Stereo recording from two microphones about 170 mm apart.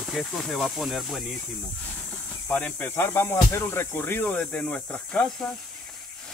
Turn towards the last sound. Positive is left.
turn(degrees=5)  # may be behind; listen again after turning